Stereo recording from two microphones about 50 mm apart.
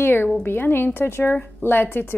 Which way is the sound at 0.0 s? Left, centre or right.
Left.